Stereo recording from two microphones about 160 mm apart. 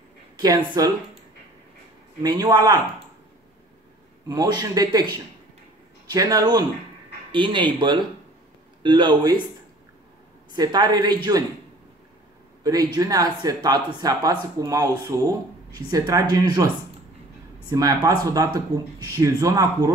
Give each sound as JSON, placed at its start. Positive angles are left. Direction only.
{"t": 0.4, "sound": "speech", "side_deg": -25}
{"t": 2.2, "sound": "speech", "side_deg": -25}
{"t": 4.3, "sound": "speech", "side_deg": -25}
{"t": 6.1, "sound": "speech", "side_deg": -25}
{"t": 10.5, "sound": "speech", "side_deg": -25}
{"t": 12.6, "sound": "speech", "side_deg": -25}
{"t": 17.6, "sound": "speech", "side_deg": -20}